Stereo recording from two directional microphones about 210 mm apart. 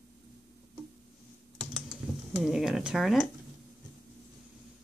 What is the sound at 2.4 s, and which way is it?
Speech, centre (ahead or behind).